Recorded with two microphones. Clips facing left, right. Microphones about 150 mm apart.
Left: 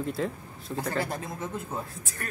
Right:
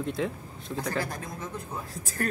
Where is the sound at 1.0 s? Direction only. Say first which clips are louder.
Left 2 dB; 25° left (ahead or behind).